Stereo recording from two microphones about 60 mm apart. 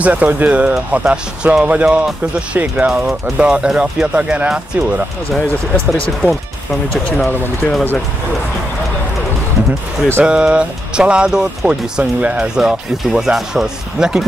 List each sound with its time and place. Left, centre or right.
0.0 s speech: right
10.2 s speech: centre